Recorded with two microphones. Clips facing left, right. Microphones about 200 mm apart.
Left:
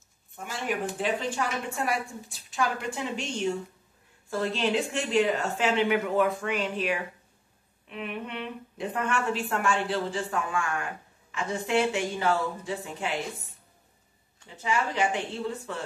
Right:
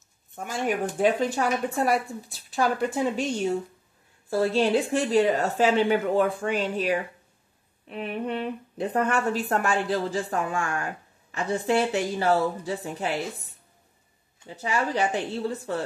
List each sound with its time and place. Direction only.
0.4 s a woman's voice: 45° right (ahead or behind)
14.6 s a woman's voice: 35° right (ahead or behind)